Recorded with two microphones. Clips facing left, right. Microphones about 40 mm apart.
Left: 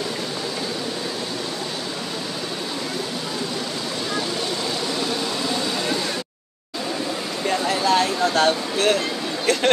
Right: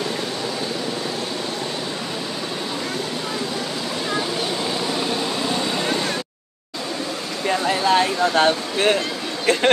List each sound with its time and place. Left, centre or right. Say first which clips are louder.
7.4 s speech: right 2 dB; right